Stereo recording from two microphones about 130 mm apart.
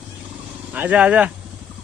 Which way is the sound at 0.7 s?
10° right (ahead or behind).